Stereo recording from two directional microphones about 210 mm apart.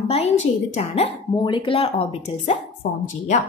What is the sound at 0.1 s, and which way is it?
A woman's voice, 30° left (ahead or behind).